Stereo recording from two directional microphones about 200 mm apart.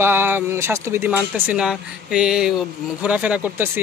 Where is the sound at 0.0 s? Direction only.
10° right (ahead or behind).